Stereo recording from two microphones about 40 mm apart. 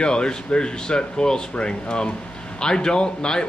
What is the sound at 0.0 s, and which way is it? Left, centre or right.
Speech, left.